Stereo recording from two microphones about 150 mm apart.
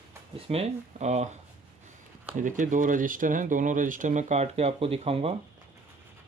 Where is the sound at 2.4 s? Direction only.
60° right (ahead or behind); by 5.3 s 40° right (ahead or behind).